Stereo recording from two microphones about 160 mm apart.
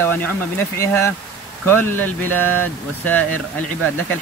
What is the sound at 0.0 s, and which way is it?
Speech, 10° left (ahead or behind).